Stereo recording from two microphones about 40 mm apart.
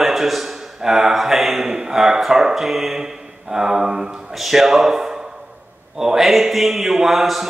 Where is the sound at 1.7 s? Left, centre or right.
Centre.